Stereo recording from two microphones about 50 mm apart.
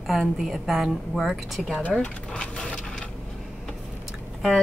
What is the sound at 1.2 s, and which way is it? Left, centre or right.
Speech, centre.